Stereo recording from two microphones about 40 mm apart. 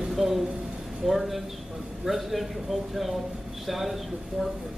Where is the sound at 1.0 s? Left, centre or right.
Centre.